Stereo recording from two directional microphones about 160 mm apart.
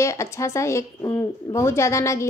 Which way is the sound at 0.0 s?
20° left (ahead or behind).